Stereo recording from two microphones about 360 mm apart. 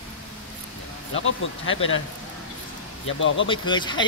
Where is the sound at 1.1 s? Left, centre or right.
Left.